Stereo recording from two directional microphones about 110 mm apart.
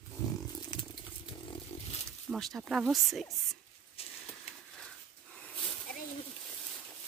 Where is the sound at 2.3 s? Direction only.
Centre (ahead or behind).